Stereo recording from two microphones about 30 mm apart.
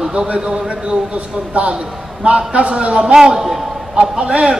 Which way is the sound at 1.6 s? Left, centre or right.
Right.